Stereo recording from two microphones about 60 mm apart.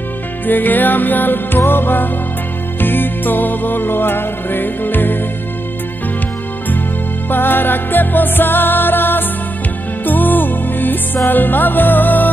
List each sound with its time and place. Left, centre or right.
0.5 s music: left
7.2 s music: left